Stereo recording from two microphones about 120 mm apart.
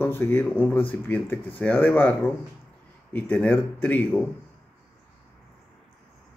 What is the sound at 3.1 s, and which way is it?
Speech, 10° left (ahead or behind).